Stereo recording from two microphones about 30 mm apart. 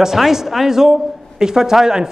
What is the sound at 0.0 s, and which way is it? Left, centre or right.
A man's voice, centre.